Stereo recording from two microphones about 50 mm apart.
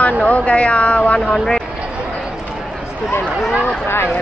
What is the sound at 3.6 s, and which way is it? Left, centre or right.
Speech, left.